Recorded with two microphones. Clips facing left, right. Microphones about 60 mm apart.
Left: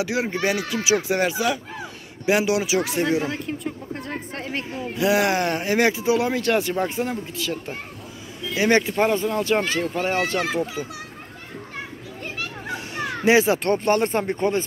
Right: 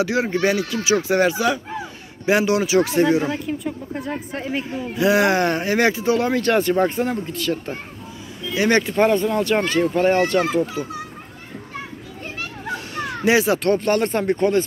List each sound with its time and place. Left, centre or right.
0.0 s speech: centre
8.5 s speech: centre
8.9 s speech: centre
12.7 s speech: centre